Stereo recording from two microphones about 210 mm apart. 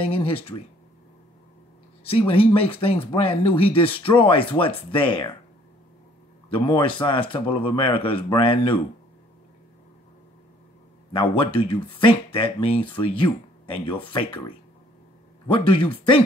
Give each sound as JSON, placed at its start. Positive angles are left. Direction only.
{"t": 0.0, "sound": "speech", "side_deg": 25}
{"t": 2.0, "sound": "speech", "side_deg": 25}
{"t": 6.5, "sound": "speech", "side_deg": 25}
{"t": 11.1, "sound": "speech", "side_deg": 25}
{"t": 15.4, "sound": "speech", "side_deg": 25}